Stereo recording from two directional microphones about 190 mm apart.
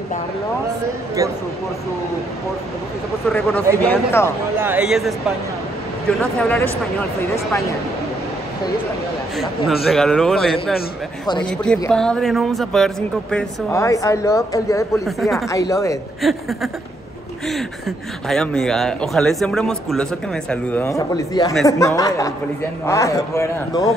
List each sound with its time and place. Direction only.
3.3 s speech: 10° left (ahead or behind)
4.6 s speech: 10° right (ahead or behind); by 7.6 s 15° left (ahead or behind)
9.8 s speech: 5° left (ahead or behind)
13.7 s speech: 15° left (ahead or behind)
15.0 s speech: centre (ahead or behind)
15.4 s speech: 15° left (ahead or behind)
16.2 s speech: centre (ahead or behind); by 23.9 s 15° left (ahead or behind)